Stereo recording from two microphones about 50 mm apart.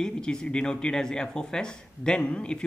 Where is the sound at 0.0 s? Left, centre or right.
Centre.